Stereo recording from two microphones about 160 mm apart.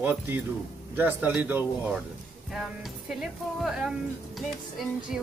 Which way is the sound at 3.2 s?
5° right (ahead or behind).